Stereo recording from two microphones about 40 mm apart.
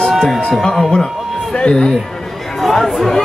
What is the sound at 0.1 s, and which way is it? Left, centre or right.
Music, centre.